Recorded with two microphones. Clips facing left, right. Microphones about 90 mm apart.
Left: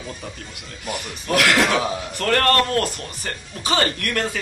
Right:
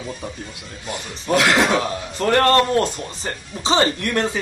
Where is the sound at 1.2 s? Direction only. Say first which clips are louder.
Right 2 dB; 20° right (ahead or behind).